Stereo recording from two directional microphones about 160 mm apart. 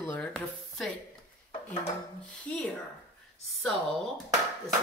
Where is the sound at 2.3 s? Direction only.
5° left (ahead or behind).